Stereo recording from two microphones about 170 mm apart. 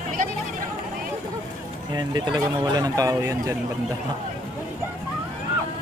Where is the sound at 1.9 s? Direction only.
25° right (ahead or behind).